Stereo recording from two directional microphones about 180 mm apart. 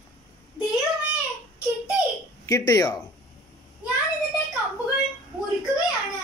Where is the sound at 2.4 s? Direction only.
20° left (ahead or behind).